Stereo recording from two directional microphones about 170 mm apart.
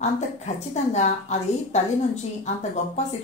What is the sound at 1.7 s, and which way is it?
A woman's voice, 40° left (ahead or behind).